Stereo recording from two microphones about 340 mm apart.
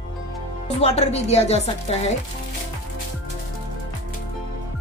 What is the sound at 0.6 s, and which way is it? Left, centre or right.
Speech, centre.